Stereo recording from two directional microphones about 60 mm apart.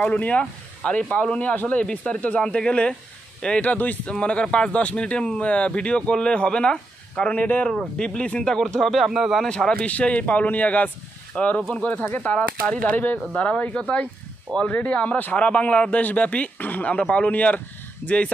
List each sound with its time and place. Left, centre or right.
0.0 s a man's voice: left; by 9.5 s centre
9.5 s a man's voice: centre
9.8 s a man's voice: left